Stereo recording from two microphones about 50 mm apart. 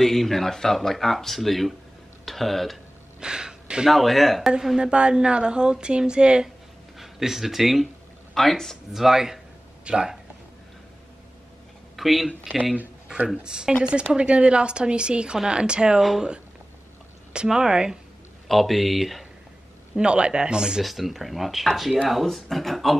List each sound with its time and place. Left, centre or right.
0.0 s speech: centre
3.2 s gasp: centre
3.9 s speech: centre
4.7 s speech: centre
7.0 s speech: centre
8.9 s a woman's voice: centre
12.0 s speech: centre
13.4 s a woman's voice: centre
16.0 s speech: centre
17.3 s speech: centre
18.5 s speech: centre
20.0 s speech: centre
20.8 s speech: centre